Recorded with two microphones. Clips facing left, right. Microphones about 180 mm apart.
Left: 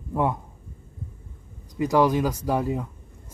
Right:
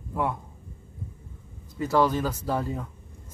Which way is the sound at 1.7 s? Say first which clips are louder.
Left 3 dB; 15° left (ahead or behind).